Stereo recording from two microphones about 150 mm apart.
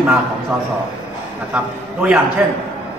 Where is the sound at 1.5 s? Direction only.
10° right (ahead or behind).